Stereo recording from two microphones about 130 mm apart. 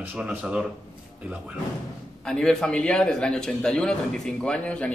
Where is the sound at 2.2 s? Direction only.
5° left (ahead or behind).